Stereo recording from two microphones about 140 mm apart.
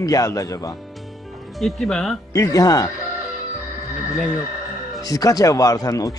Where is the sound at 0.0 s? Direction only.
25° left (ahead or behind).